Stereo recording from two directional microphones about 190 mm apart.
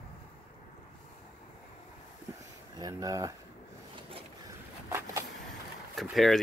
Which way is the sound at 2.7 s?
20° right (ahead or behind).